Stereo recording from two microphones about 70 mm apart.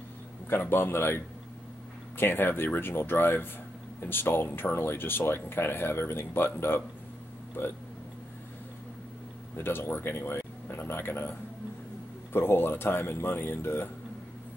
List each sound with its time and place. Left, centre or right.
0.5 s speech: left
9.6 s speech: left